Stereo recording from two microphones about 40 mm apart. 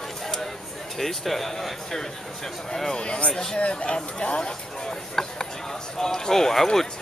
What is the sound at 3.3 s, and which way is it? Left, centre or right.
Speech, centre.